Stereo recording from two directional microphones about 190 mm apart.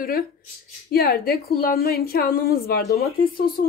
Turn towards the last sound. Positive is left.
turn(degrees=50)  # may be behind; listen again after turning